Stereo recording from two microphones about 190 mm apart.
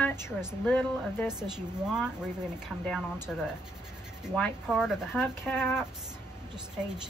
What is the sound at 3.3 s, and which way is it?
Speech, 5° left (ahead or behind).